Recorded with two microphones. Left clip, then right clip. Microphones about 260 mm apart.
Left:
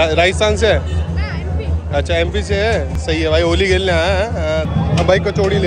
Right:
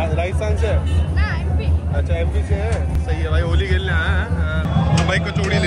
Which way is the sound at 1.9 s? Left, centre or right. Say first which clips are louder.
Left 10 dB; left.